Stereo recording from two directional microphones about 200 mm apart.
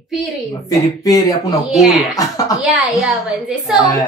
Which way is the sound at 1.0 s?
20° left (ahead or behind).